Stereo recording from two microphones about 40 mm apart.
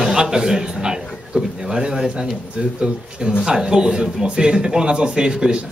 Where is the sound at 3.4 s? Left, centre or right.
Centre.